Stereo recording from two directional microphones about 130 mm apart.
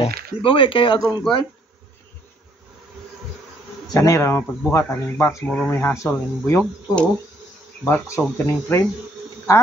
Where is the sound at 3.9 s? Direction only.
25° left (ahead or behind).